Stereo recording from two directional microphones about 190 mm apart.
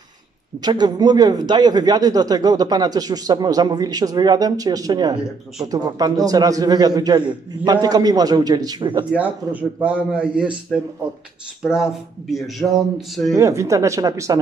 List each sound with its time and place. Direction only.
0.6 s speech: 20° right (ahead or behind)
9.1 s speech: 5° right (ahead or behind)
13.3 s speech: 15° right (ahead or behind)